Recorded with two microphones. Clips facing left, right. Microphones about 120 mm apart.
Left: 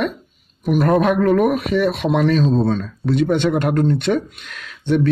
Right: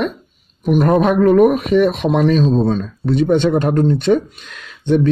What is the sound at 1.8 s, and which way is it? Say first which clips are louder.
Speech: right 2 dB; 15° right (ahead or behind).